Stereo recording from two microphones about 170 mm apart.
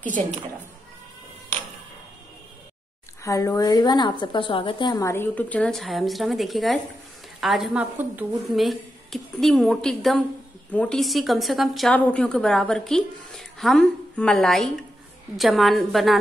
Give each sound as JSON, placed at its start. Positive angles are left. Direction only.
{"t": 3.3, "sound": "a woman's voice", "side_deg": 20}